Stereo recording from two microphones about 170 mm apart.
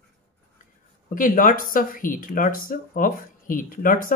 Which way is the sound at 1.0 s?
50° left (ahead or behind).